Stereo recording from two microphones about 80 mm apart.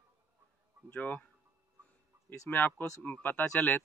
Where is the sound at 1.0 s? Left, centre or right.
Left.